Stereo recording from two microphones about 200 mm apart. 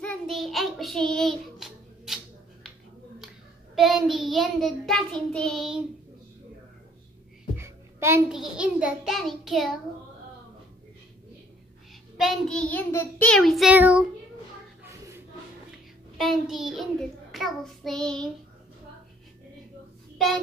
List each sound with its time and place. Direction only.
0.0 s child singing: centre (ahead or behind)
3.7 s child singing: centre (ahead or behind)
7.5 s a sound: 15° right (ahead or behind)
8.3 s child singing: 5° right (ahead or behind)
12.2 s child singing: centre (ahead or behind)
14.8 s a sound: 15° right (ahead or behind)
16.2 s child singing: centre (ahead or behind)